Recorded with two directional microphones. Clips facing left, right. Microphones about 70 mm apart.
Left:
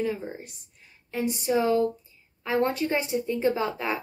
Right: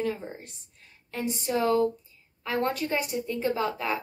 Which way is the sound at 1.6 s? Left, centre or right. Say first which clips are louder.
Right 1 dB; centre.